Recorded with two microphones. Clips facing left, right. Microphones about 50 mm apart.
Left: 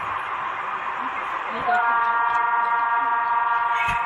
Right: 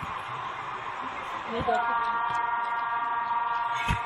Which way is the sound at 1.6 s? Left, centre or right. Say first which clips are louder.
Left 5 dB; left.